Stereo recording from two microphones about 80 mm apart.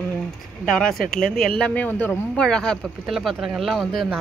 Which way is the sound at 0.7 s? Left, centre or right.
Centre.